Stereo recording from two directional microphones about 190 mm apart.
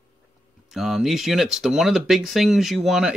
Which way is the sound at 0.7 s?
Centre (ahead or behind).